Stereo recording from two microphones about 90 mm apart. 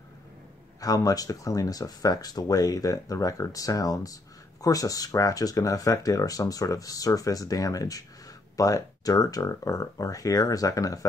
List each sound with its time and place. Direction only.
0.7 s speech: 40° left (ahead or behind)